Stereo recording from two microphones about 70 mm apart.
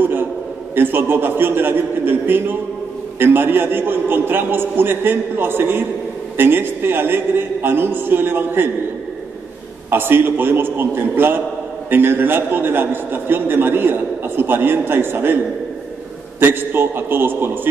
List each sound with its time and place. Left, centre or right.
0.0 s a sound: right
0.7 s a man's voice: right
9.8 s a man's voice: right
16.3 s a man's voice: right